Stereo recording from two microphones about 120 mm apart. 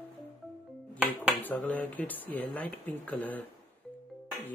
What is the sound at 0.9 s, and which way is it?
Speech, 10° right (ahead or behind).